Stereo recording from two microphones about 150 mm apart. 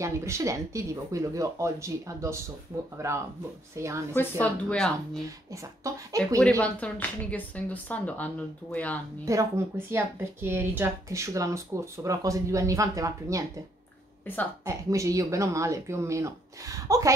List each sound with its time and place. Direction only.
0.0 s a woman's voice: 20° right (ahead or behind)
4.1 s speech: 10° left (ahead or behind)
5.5 s a woman's voice: 20° right (ahead or behind)
6.6 s speech: 10° left (ahead or behind)
9.2 s a woman's voice: 20° right (ahead or behind)
14.2 s speech: 10° left (ahead or behind)
14.6 s a woman's voice: 20° right (ahead or behind)